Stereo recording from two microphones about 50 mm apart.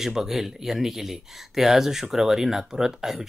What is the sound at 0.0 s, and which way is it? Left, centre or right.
Speech, centre.